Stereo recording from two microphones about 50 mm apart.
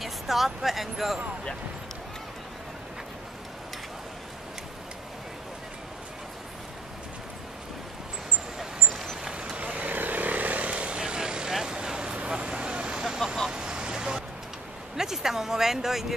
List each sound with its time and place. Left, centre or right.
0.0 s speech: centre
8.5 s vehicle: centre
9.2 s vehicle: centre
13.0 s vehicle: centre
15.0 s a sound: centre